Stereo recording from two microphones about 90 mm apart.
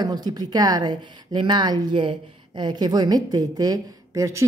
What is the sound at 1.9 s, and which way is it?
A woman's voice, 65° right (ahead or behind).